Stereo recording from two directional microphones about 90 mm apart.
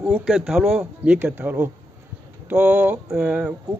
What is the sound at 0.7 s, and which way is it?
Speech, 15° right (ahead or behind).